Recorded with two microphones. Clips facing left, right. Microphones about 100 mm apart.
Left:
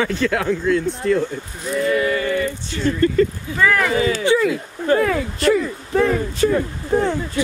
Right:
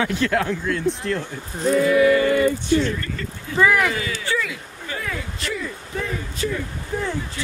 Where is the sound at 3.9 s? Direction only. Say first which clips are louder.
Left 9 dB; 30° left (ahead or behind).